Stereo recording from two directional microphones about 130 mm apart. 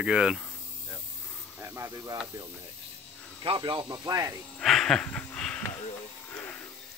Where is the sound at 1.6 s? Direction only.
20° right (ahead or behind).